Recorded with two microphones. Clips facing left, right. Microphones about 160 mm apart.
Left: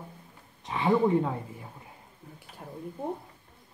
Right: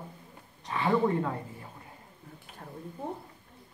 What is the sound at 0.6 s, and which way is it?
Speech, 15° left (ahead or behind).